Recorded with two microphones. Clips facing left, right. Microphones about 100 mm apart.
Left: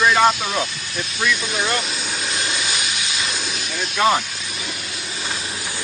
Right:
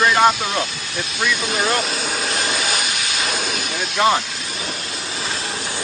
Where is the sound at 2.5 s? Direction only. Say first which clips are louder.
Right 3 dB; 50° right (ahead or behind).